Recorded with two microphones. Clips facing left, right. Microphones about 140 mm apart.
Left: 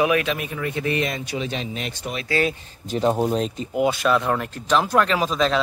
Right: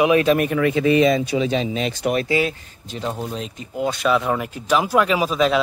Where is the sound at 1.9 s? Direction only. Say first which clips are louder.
Right 9 dB; 90° right.